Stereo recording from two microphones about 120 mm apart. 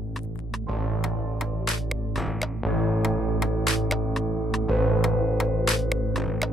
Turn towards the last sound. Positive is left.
turn(degrees=0)  # may be behind; listen again after turning